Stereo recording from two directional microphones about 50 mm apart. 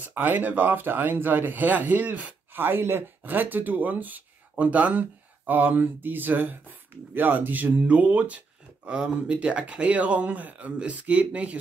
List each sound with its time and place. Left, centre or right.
0.0 s speech: right
2.5 s speech: right